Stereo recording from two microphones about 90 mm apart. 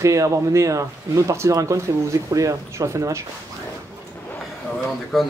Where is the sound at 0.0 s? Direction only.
35° right (ahead or behind).